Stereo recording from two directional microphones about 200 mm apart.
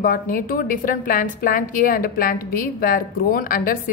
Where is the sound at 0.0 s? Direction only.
45° left (ahead or behind).